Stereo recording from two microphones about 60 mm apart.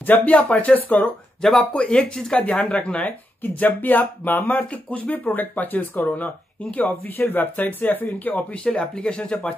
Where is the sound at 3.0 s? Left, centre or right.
Left.